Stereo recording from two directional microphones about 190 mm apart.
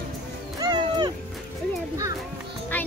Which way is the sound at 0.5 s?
20° right (ahead or behind).